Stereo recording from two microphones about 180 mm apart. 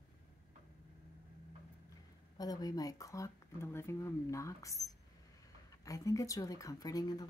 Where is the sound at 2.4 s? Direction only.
20° left (ahead or behind).